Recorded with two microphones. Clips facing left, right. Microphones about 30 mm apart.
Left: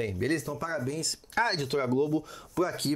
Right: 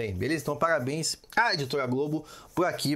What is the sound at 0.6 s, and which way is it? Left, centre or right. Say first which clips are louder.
Speech: right 6 dB; right.